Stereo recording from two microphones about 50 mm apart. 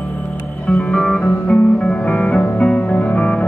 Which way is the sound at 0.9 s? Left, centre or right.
Centre.